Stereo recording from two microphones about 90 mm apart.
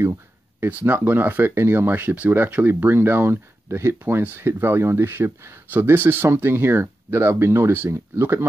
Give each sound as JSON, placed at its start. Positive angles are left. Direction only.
{"t": 0.0, "sound": "speech", "side_deg": -25}